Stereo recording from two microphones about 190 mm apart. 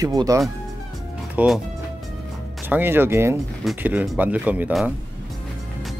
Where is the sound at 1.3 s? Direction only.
Centre (ahead or behind).